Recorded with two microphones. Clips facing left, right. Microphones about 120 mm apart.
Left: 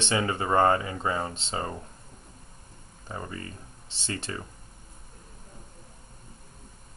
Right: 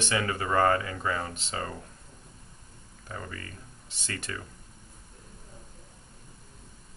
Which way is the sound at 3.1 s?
25° left (ahead or behind).